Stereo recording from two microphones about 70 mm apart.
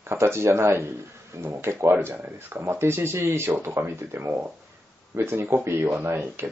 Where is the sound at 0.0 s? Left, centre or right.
Right.